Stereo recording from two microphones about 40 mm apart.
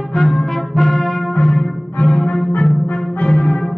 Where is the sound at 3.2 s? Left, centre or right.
Left.